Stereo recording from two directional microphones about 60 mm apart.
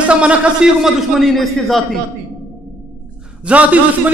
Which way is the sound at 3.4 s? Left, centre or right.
Right.